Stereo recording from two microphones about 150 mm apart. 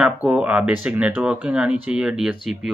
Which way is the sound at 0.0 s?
5° right (ahead or behind).